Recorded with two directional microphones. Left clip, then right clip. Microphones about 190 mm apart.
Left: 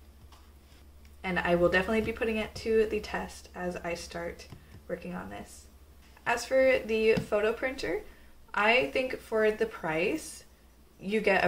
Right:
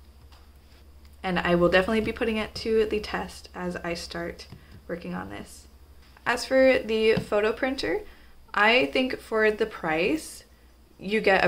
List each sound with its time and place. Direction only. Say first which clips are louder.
1.2 s speech: right 3 dB; 45° right (ahead or behind)